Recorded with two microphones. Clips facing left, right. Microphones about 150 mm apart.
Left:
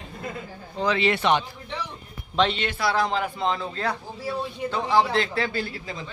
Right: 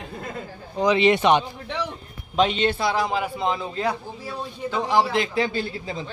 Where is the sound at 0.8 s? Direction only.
20° right (ahead or behind).